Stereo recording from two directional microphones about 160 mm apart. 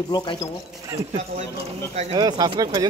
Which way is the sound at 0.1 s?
25° left (ahead or behind).